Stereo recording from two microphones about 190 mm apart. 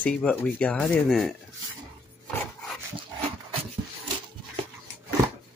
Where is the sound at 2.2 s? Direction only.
5° left (ahead or behind).